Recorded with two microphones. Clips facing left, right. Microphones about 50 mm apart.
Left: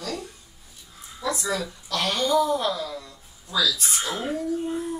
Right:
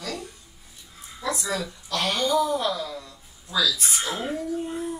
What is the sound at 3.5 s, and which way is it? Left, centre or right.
Speech, right.